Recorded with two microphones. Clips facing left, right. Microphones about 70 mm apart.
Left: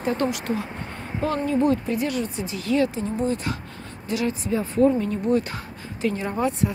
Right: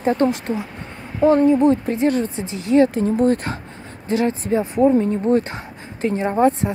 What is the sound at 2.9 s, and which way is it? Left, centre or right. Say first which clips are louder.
Speech: right 8 dB; right.